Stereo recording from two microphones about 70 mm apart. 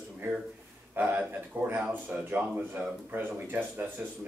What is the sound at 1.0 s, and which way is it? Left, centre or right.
Speech, right.